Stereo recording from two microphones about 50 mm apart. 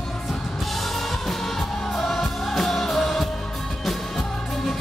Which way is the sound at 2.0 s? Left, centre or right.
Centre.